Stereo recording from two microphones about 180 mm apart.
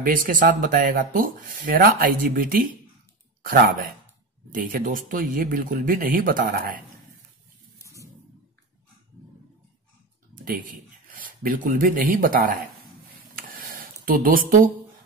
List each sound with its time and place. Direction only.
0.0 s speech: 50° right (ahead or behind)
10.4 s speech: 50° right (ahead or behind)
13.4 s a sound: 50° right (ahead or behind)